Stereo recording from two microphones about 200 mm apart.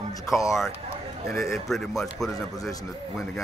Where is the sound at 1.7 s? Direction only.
Centre (ahead or behind).